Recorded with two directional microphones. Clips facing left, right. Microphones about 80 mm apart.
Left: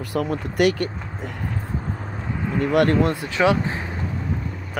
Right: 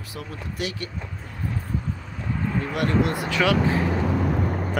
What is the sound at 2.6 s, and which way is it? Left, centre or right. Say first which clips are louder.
Speech: left 7 dB; left.